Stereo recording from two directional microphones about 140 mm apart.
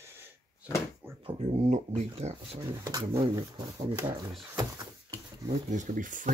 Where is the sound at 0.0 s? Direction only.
15° right (ahead or behind).